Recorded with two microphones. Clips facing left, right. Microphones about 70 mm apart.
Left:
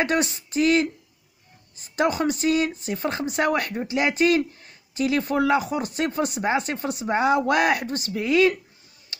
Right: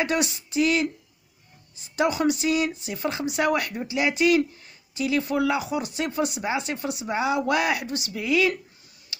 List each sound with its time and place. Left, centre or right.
0.0 s speech: left
9.1 s tick-tock: left